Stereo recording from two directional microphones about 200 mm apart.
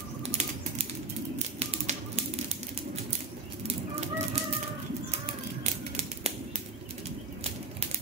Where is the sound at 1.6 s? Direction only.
30° right (ahead or behind).